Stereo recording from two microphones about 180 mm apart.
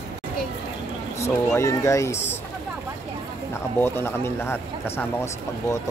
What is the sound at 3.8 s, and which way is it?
Speech, 15° left (ahead or behind).